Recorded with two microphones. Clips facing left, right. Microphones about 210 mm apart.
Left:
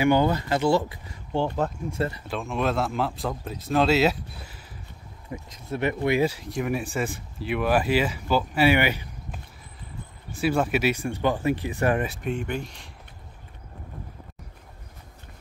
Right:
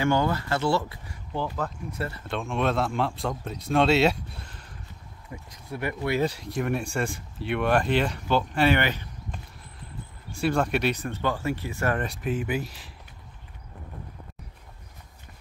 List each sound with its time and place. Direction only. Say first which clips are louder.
0.0 s speech: left 3 dB; 20° left (ahead or behind)
2.1 s a man's voice: even; 5° left (ahead or behind)
5.3 s speech: left 5 dB; 20° left (ahead or behind)
6.2 s speech: left 1 dB; centre (ahead or behind)
12.1 s a man's voice: right 1 dB; centre (ahead or behind)